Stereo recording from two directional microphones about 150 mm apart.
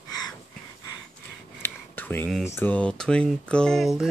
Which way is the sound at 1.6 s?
15° left (ahead or behind).